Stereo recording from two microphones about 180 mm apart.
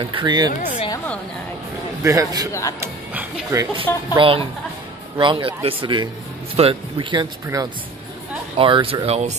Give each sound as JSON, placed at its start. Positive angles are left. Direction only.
{"t": 0.0, "sound": "speech", "side_deg": -25}
{"t": 0.7, "sound": "a sound", "side_deg": 30}
{"t": 2.0, "sound": "speech", "side_deg": -20}
{"t": 3.7, "sound": "speech", "side_deg": -30}
{"t": 8.5, "sound": "speech", "side_deg": -30}